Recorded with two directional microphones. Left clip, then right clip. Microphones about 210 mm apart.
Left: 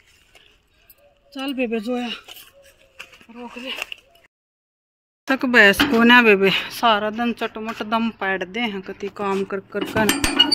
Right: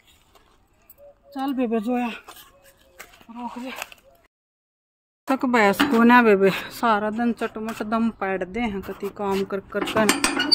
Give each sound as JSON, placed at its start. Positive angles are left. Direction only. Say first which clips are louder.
{"t": 1.7, "sound": "speech", "louder": "even", "side_deg": -15}
{"t": 3.3, "sound": "speech", "louder": "left 3 dB", "side_deg": 5}
{"t": 5.2, "sound": "speech", "louder": "left 5 dB", "side_deg": -5}
{"t": 10.0, "sound": "speech", "louder": "left 4 dB", "side_deg": 45}